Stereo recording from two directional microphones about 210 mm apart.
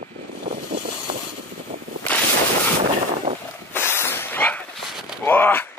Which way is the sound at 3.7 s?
10° left (ahead or behind).